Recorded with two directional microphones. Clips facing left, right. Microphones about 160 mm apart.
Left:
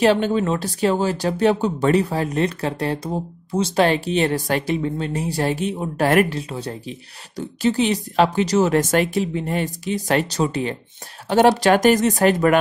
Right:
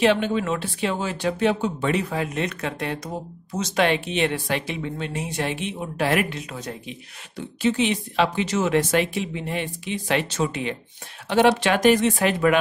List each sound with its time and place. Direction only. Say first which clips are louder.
0.0 s speech: left 3 dB; 40° left (ahead or behind)